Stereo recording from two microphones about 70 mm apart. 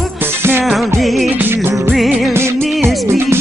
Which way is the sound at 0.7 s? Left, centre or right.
Centre.